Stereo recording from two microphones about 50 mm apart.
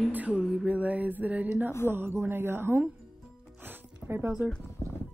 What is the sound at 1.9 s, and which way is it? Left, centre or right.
Speech, right.